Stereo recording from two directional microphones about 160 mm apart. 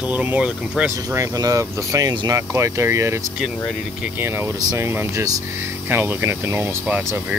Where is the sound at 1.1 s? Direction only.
20° right (ahead or behind).